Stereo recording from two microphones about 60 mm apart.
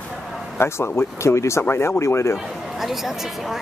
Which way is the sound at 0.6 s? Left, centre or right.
Left.